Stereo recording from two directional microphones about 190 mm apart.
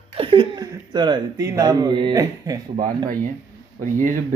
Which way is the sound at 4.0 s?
45° right (ahead or behind).